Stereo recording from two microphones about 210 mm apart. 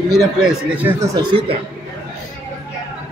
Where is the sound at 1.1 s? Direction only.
25° right (ahead or behind).